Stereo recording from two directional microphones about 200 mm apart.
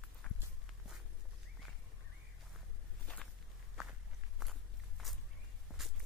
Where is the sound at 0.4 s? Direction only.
5° right (ahead or behind).